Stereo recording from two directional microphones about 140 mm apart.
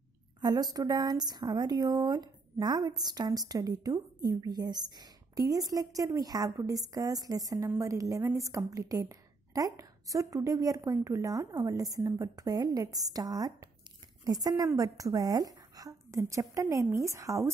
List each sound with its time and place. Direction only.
0.4 s a woman's voice: 30° right (ahead or behind)